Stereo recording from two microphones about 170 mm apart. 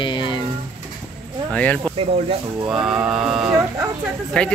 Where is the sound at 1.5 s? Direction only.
10° left (ahead or behind).